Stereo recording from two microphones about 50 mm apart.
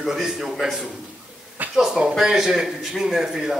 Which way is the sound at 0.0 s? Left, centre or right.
Centre.